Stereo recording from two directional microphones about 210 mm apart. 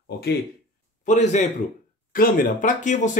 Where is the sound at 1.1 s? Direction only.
35° left (ahead or behind).